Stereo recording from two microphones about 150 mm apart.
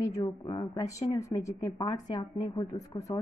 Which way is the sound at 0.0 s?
25° left (ahead or behind).